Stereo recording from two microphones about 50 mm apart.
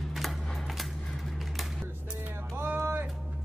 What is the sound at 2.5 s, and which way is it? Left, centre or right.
Music, right.